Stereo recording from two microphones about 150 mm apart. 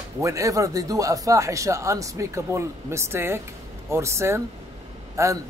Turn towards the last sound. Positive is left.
turn(degrees=-20)  # may be behind; listen again after turning